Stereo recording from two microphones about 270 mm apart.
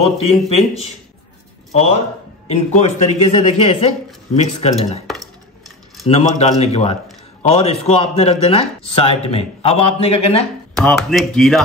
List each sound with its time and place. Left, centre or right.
0.0 s a man's voice: left
6.0 s a man's voice: left
10.7 s speech: centre